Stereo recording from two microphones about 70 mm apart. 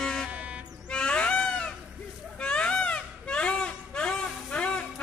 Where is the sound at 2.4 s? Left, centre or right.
Centre.